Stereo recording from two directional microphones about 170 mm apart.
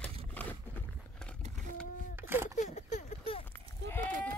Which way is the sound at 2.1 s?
15° right (ahead or behind).